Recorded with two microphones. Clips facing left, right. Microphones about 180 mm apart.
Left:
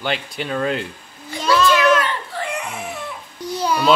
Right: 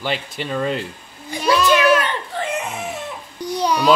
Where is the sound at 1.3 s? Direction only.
15° right (ahead or behind).